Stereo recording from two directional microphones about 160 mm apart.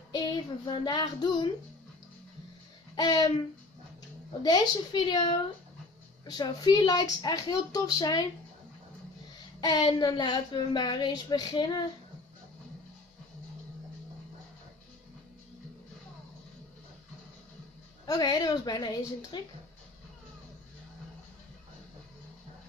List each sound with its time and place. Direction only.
0.1 s child singing: 25° left (ahead or behind)
3.0 s speech: 25° left (ahead or behind)
4.4 s speech: 25° left (ahead or behind)
6.2 s speech: 25° left (ahead or behind)
9.6 s speech: 25° left (ahead or behind)
18.0 s speech: 25° left (ahead or behind)